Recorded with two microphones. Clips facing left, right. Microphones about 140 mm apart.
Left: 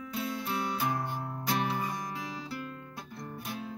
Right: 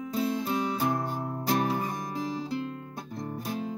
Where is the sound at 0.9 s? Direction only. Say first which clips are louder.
Right 4 dB; 45° right (ahead or behind).